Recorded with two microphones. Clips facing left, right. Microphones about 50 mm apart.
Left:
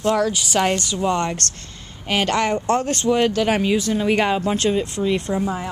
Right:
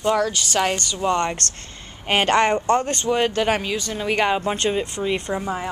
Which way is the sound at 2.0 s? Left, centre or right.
Right.